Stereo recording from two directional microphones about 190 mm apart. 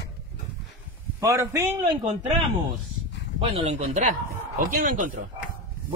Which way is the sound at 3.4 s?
30° right (ahead or behind).